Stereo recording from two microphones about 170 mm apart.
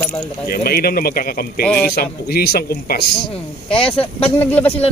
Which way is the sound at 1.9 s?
65° left (ahead or behind).